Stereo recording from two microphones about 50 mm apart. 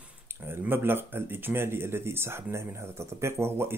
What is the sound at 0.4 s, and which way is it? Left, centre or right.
Speech, right.